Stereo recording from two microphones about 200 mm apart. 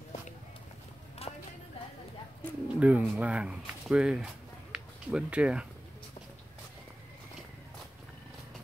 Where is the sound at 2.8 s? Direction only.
5° right (ahead or behind).